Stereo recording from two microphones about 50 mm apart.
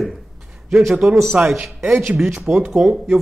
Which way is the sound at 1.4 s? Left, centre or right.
Right.